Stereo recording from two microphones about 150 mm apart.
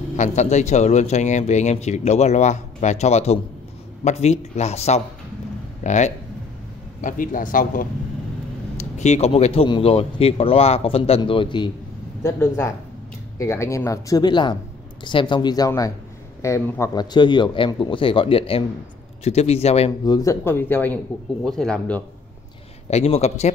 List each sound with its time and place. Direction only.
0.1 s speech: 55° left (ahead or behind)
7.0 s a man's voice: 65° left (ahead or behind)
8.9 s speech: 50° left (ahead or behind); by 11.7 s 30° left (ahead or behind)
12.2 s speech: 20° left (ahead or behind); by 19.9 s 45° left (ahead or behind)
20.1 s speech: 20° left (ahead or behind); by 22.0 s 5° left (ahead or behind)
22.8 s speech: 45° left (ahead or behind)